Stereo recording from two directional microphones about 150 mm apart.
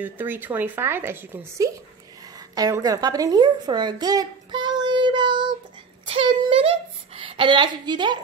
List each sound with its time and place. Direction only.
0.0 s speech: 10° right (ahead or behind)
2.5 s a woman's voice: 25° right (ahead or behind)
6.1 s a sound: 35° right (ahead or behind)
7.2 s a woman's voice: 35° right (ahead or behind)